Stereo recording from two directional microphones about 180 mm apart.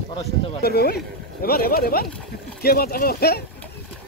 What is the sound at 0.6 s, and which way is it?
Speech, 60° left (ahead or behind).